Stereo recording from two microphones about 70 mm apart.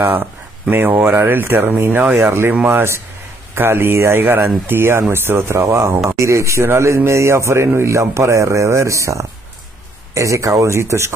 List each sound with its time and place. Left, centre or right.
0.0 s a man's voice: right